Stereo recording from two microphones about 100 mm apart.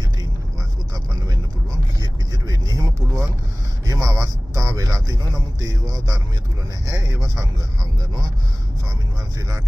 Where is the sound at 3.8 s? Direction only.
35° right (ahead or behind).